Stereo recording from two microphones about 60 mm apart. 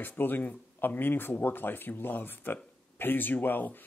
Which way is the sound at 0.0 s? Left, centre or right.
Left.